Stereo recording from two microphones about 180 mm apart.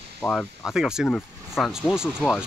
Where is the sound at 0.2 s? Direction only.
5° left (ahead or behind).